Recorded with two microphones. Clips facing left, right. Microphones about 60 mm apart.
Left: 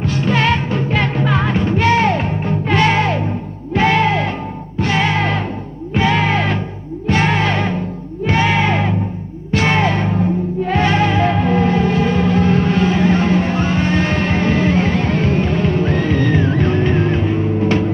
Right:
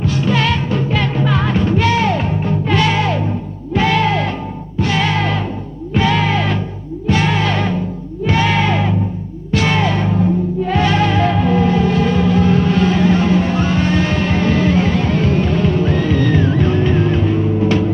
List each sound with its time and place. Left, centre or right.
0.0 s music: left